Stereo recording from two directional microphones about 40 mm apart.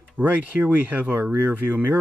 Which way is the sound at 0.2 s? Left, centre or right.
Right.